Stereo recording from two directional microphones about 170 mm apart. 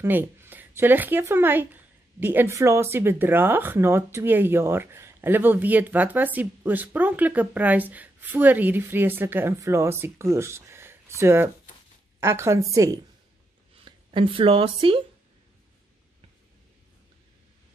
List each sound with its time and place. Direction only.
0.0 s speech: 15° right (ahead or behind)
13.8 s speech: 30° right (ahead or behind)